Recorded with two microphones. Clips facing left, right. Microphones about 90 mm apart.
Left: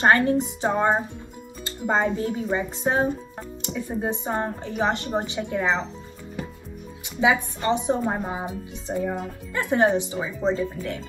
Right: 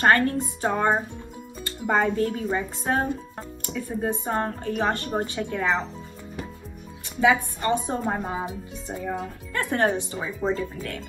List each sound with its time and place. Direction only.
0.0 s a woman's voice: 20° left (ahead or behind)
7.2 s speech: 15° left (ahead or behind)